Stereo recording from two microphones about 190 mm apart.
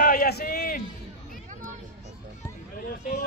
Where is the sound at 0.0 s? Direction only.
50° left (ahead or behind).